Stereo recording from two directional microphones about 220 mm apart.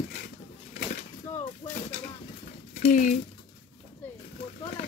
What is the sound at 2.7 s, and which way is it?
Speech, 35° left (ahead or behind).